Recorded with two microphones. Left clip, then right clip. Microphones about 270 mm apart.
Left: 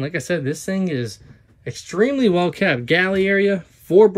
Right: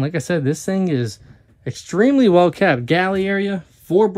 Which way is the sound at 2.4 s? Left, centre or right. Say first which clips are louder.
Right 3 dB; right.